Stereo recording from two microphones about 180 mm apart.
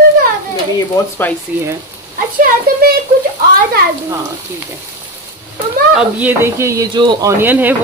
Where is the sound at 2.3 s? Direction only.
55° right (ahead or behind).